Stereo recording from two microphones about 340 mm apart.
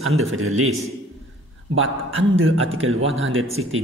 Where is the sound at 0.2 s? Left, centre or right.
Right.